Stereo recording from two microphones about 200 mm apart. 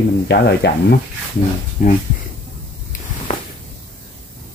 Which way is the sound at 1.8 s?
40° left (ahead or behind).